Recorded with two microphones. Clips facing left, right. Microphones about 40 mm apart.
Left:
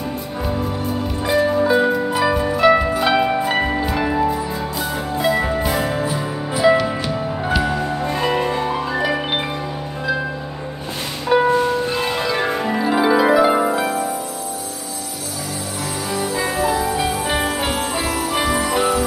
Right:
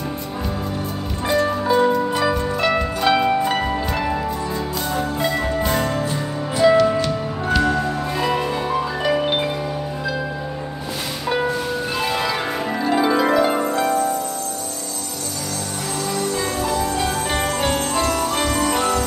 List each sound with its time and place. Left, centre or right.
1.3 s music: centre
11.3 s music: centre
16.1 s music: centre
17.3 s jingle bell: centre